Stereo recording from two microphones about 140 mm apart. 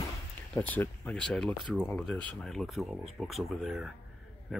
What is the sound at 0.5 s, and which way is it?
Speech, 10° left (ahead or behind).